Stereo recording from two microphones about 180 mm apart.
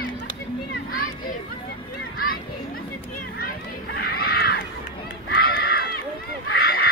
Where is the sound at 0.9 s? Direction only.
55° left (ahead or behind).